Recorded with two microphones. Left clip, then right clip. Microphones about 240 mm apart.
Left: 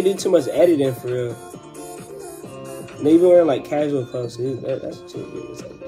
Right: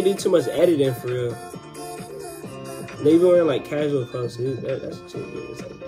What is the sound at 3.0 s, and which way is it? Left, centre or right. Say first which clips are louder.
Speech: left 3 dB; centre.